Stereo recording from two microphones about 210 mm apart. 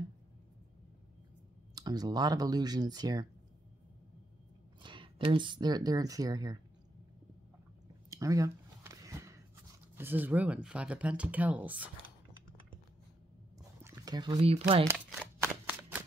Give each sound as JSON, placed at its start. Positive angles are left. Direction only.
{"t": 1.8, "sound": "speech", "side_deg": -20}
{"t": 4.8, "sound": "speech", "side_deg": -25}
{"t": 8.1, "sound": "a sound", "side_deg": -15}
{"t": 9.9, "sound": "speech", "side_deg": -10}
{"t": 13.8, "sound": "speech", "side_deg": -15}
{"t": 15.0, "sound": "shuffling cards", "side_deg": -5}